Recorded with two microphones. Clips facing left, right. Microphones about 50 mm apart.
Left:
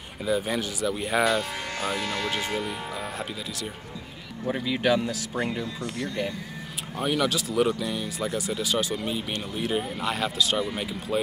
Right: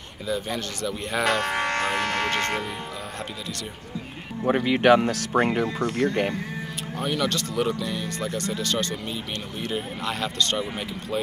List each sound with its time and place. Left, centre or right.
0.3 s speech: centre
1.2 s speech: right
4.5 s speech: right
7.0 s speech: centre